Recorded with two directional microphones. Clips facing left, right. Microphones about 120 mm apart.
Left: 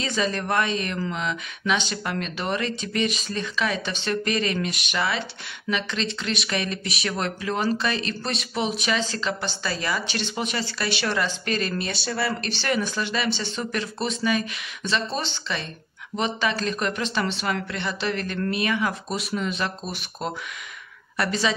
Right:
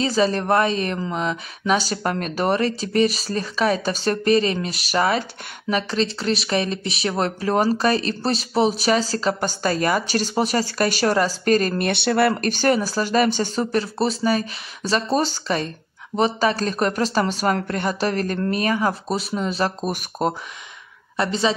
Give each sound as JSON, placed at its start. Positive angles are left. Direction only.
{"t": 0.0, "sound": "speech", "side_deg": -35}
{"t": 11.8, "sound": "speech", "side_deg": -60}
{"t": 21.2, "sound": "a woman's voice", "side_deg": -30}